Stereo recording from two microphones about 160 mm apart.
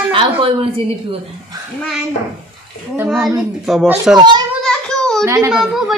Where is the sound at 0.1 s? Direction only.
35° right (ahead or behind).